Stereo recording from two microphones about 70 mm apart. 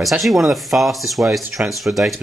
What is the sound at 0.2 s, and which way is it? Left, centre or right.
Speech, centre.